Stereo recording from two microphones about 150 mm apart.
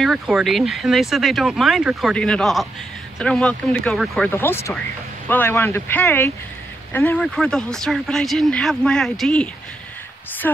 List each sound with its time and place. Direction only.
0.0 s speech: centre (ahead or behind)
4.3 s speech: 15° left (ahead or behind)
10.4 s speech: 15° left (ahead or behind)